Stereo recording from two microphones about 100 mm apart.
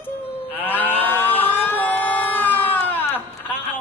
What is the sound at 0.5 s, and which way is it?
Moo, 20° left (ahead or behind).